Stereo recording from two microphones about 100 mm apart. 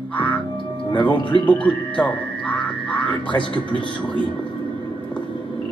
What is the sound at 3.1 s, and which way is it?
Speech, 50° left (ahead or behind).